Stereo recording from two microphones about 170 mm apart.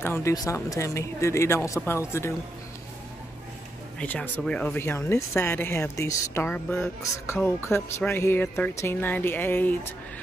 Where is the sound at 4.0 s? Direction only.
10° left (ahead or behind).